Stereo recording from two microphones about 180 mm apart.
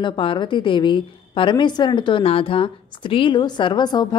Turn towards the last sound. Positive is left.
turn(degrees=25)  # may be behind; listen again after turning